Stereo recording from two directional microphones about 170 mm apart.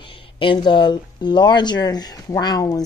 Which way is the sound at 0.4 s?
30° left (ahead or behind).